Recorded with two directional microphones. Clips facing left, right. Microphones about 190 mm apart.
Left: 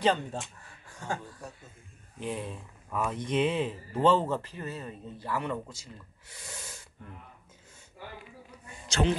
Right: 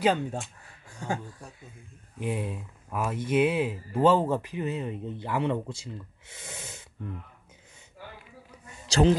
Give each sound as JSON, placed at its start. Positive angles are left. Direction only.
{"t": 0.0, "sound": "speech", "side_deg": -10}
{"t": 2.1, "sound": "speech", "side_deg": -10}
{"t": 6.2, "sound": "a sound", "side_deg": -20}
{"t": 8.8, "sound": "a man's voice", "side_deg": -35}